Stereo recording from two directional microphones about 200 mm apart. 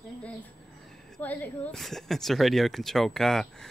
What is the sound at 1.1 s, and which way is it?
Speech, 10° left (ahead or behind).